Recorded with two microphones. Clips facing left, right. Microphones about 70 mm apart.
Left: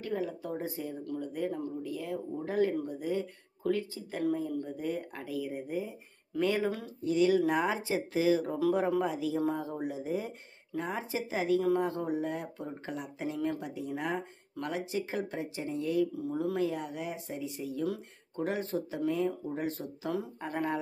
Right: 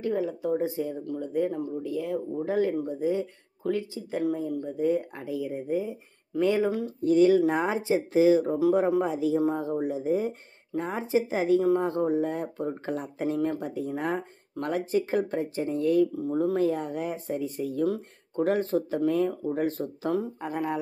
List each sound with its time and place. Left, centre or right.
0.0 s speech: right
7.0 s speech: right
16.2 s speech: right